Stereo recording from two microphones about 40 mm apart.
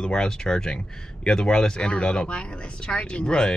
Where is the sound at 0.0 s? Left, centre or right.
Centre.